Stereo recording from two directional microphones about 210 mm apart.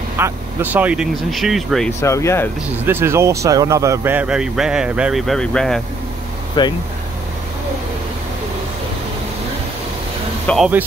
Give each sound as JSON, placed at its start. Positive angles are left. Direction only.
{"t": 0.2, "sound": "speech", "side_deg": -10}
{"t": 1.9, "sound": "speech", "side_deg": 15}
{"t": 2.8, "sound": "speech", "side_deg": -10}
{"t": 6.6, "sound": "speech", "side_deg": 20}
{"t": 10.4, "sound": "speech", "side_deg": 0}